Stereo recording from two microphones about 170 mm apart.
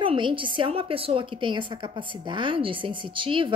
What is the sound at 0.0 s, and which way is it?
A woman's voice, 30° right (ahead or behind).